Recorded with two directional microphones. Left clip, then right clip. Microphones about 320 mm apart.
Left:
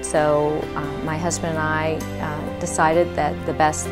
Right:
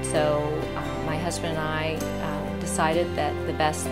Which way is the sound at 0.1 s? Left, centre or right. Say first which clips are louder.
Left 6 dB; left.